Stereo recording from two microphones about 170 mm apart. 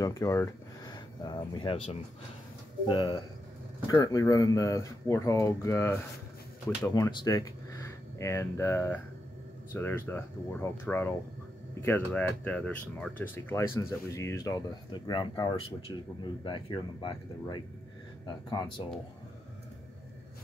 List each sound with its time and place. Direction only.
0.0 s speech: 20° left (ahead or behind)
2.9 s speech: 25° left (ahead or behind)